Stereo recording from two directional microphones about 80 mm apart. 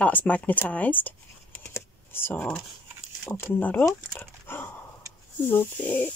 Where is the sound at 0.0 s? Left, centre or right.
Centre.